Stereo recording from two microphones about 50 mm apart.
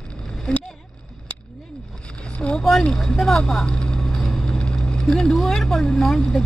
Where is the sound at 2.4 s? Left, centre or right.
Centre.